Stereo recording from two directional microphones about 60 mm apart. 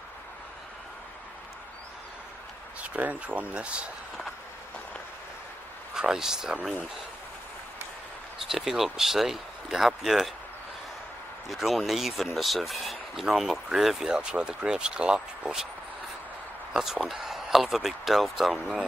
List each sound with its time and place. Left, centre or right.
2.8 s speech: right
5.9 s speech: centre
8.5 s speech: centre
11.4 s speech: centre
16.7 s speech: centre